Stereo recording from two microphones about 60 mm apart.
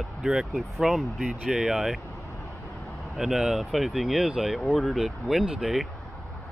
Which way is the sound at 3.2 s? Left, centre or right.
Centre.